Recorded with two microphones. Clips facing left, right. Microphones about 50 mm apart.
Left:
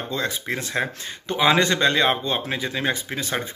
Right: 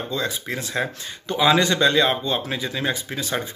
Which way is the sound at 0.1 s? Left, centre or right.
Left.